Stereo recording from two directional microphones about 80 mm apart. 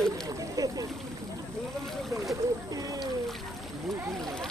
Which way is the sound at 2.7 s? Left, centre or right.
Right.